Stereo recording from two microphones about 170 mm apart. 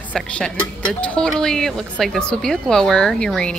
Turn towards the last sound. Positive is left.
turn(degrees=5)  # may be behind; listen again after turning